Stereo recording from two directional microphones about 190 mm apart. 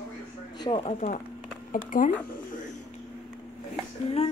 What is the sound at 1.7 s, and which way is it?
Speech, 45° left (ahead or behind).